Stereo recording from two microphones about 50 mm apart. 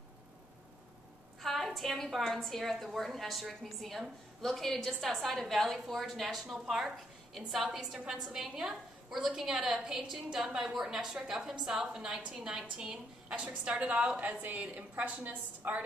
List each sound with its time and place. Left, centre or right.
1.4 s a sound: centre
2.1 s a woman's voice: centre
6.6 s a woman's voice: centre
7.3 s a woman's voice: centre; by 14.2 s right
14.2 s a woman's voice: right